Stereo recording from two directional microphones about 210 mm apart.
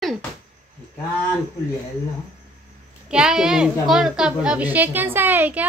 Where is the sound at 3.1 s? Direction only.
5° right (ahead or behind).